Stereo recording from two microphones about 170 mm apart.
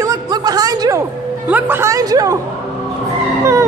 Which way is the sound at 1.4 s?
10° right (ahead or behind).